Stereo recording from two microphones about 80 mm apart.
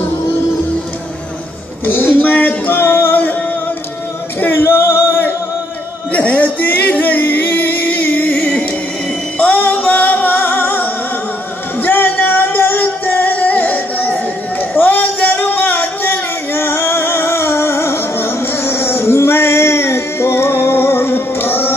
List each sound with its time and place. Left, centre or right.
1.9 s music: left
4.4 s singing: left
6.1 s music: centre
14.6 s a sound: left